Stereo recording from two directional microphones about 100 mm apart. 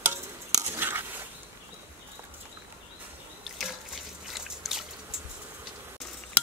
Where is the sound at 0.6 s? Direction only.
25° right (ahead or behind).